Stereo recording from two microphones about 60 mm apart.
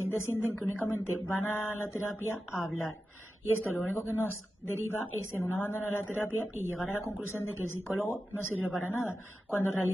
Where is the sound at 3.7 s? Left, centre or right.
Left.